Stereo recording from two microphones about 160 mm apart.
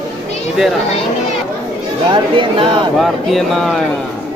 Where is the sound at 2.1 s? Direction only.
30° right (ahead or behind).